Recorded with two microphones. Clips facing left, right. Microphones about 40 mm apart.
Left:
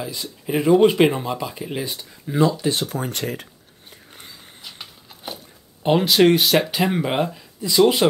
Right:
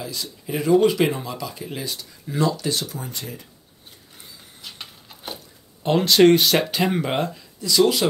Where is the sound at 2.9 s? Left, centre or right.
Left.